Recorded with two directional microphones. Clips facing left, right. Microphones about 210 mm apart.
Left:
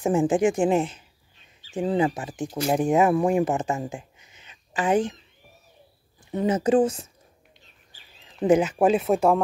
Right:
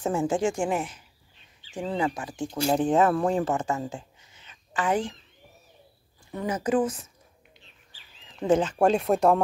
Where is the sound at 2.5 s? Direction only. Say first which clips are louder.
Left 1 dB; 10° left (ahead or behind).